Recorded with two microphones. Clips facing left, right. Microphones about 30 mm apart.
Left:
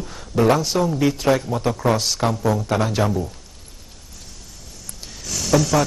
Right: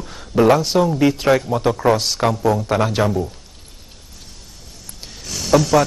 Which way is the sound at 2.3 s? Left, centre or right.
Centre.